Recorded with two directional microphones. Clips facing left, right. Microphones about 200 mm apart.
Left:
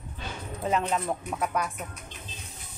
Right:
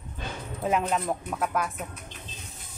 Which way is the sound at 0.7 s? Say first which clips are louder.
Right 1 dB; 5° right (ahead or behind).